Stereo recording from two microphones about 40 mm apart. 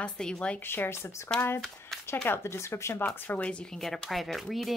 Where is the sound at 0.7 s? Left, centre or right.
Left.